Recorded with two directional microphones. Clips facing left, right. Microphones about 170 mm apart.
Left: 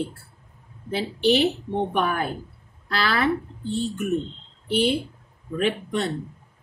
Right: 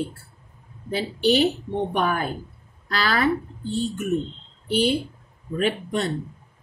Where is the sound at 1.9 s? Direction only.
40° right (ahead or behind).